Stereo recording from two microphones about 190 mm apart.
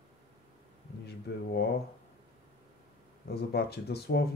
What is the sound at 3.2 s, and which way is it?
Speech, 55° left (ahead or behind).